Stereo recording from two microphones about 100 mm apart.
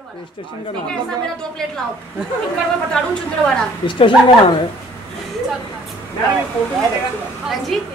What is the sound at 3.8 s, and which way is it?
Speech, 55° left (ahead or behind).